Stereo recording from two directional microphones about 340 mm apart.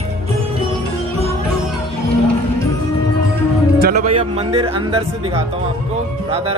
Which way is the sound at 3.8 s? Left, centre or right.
Right.